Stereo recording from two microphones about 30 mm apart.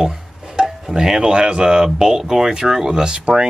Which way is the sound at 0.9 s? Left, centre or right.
Centre.